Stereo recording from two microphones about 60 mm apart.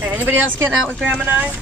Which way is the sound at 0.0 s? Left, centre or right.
Right.